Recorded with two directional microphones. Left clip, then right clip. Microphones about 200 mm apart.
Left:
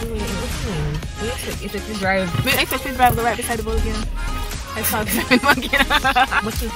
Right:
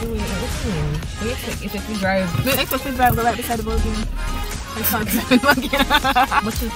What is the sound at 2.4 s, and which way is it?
Speech, centre (ahead or behind).